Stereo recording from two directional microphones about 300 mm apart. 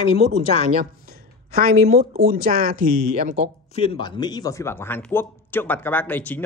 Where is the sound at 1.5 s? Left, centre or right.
Right.